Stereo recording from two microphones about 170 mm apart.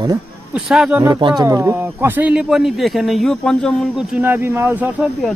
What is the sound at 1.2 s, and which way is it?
Speech, 30° right (ahead or behind).